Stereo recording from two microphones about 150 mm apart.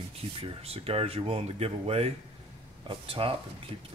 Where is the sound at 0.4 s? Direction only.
40° right (ahead or behind).